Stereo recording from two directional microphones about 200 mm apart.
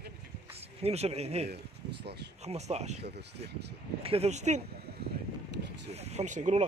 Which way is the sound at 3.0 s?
55° right (ahead or behind).